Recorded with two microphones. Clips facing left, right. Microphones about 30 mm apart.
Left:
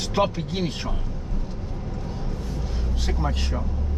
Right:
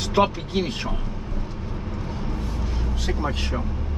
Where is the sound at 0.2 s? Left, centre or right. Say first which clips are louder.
Right 2 dB; right.